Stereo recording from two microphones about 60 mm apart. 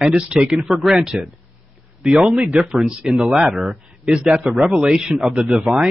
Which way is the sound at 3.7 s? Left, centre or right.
Right.